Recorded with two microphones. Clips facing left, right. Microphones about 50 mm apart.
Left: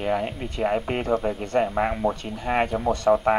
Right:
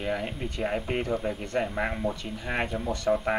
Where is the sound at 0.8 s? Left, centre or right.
Left.